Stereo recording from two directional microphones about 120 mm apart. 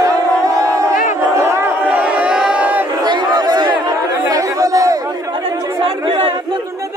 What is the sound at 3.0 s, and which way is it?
Chatter, 35° right (ahead or behind).